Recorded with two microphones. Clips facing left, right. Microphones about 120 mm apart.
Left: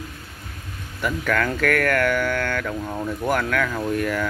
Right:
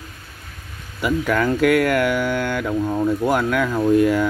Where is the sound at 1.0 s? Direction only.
15° right (ahead or behind).